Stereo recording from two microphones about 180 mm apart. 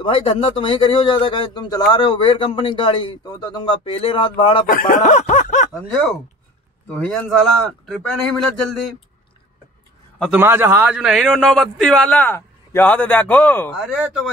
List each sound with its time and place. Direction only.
0.0 s a man's voice: 30° left (ahead or behind)
4.6 s snicker: 50° left (ahead or behind)
5.7 s a man's voice: 5° left (ahead or behind)
10.3 s a man's voice: 15° right (ahead or behind); by 13.8 s 10° left (ahead or behind)